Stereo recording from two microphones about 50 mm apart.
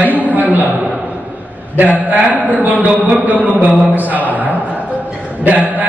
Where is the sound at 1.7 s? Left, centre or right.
Right.